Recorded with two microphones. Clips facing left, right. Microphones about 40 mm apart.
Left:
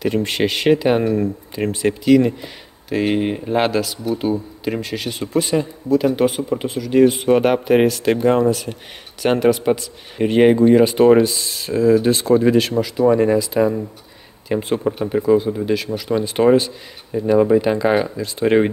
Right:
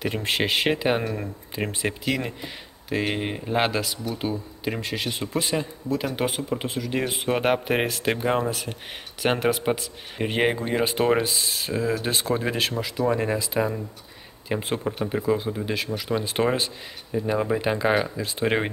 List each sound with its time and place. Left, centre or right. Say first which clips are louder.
0.0 s speech: left 6 dB; centre